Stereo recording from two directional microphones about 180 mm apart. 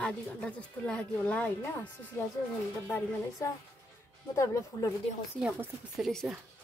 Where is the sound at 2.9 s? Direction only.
10° left (ahead or behind).